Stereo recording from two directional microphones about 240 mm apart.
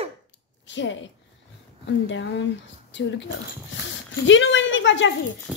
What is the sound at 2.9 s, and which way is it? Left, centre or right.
Speech, left.